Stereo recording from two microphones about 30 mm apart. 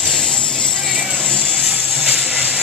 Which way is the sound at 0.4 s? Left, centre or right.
Left.